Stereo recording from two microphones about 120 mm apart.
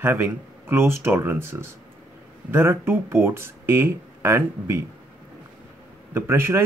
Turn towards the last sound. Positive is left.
turn(degrees=-20)  # may be behind; listen again after turning